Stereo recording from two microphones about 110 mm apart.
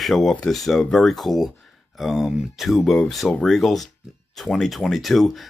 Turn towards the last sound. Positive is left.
turn(degrees=0)  # may be behind; listen again after turning